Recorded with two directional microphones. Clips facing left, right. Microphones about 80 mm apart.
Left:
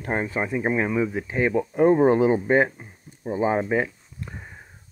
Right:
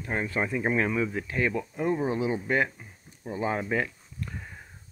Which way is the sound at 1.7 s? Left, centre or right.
Left.